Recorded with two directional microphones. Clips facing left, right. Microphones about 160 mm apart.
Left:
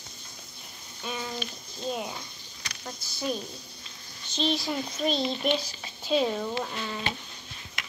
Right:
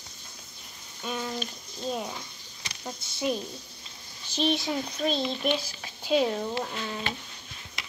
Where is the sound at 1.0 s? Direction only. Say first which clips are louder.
Right 2 dB; centre (ahead or behind).